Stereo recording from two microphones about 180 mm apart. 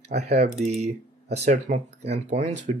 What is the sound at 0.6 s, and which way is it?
Speech, 40° right (ahead or behind).